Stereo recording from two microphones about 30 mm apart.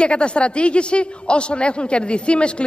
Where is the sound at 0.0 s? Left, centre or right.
Left.